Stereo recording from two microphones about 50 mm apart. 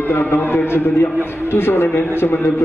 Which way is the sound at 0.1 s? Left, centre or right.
Left.